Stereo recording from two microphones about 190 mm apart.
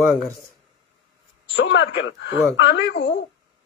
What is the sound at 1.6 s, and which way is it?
A man's voice, 75° left (ahead or behind).